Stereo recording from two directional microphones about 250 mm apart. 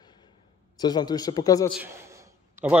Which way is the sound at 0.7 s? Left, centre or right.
Centre.